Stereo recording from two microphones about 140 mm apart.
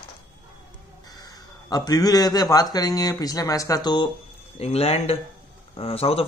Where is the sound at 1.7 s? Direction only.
25° left (ahead or behind).